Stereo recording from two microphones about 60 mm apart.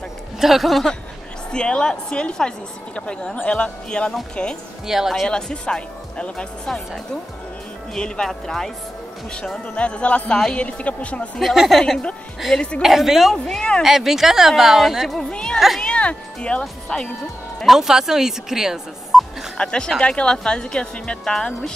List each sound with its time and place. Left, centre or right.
0.4 s speech: centre
1.5 s speech: centre
4.8 s speech: centre
5.3 s speech: centre
7.9 s speech: centre
9.8 s speech: centre
11.3 s speech: centre
13.6 s speech: centre
13.8 s speech: centre
17.6 s speech: centre
19.5 s speech: centre